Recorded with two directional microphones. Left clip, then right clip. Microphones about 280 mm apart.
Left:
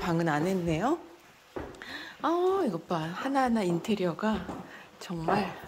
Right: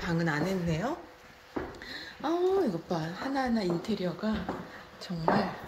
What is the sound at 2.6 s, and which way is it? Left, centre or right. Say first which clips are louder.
Speech: left 1 dB; centre.